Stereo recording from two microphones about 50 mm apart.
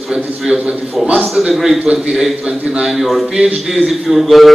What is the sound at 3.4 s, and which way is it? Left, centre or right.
Speech, right.